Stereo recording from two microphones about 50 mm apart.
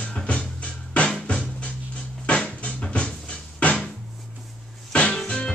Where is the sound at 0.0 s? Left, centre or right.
Left.